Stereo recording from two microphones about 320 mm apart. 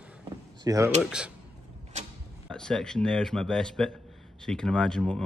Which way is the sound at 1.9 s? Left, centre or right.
Right.